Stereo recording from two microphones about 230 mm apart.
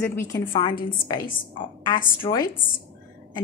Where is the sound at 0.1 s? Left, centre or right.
Centre.